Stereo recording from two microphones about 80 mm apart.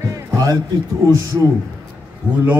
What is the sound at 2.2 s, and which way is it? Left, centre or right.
Speech, centre.